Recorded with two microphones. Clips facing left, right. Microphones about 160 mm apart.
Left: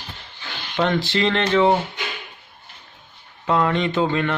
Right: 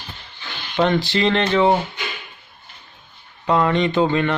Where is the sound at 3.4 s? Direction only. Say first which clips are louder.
Right 2 dB; centre (ahead or behind).